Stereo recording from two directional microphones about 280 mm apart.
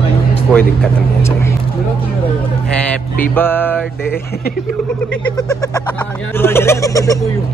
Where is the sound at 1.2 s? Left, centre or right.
Centre.